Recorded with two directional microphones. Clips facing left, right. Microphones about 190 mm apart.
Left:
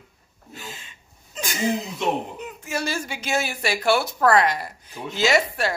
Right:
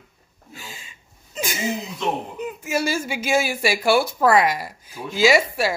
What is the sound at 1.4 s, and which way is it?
A woman's voice, 15° right (ahead or behind).